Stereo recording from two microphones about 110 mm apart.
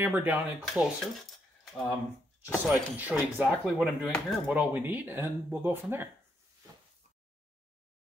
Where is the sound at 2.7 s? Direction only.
15° right (ahead or behind).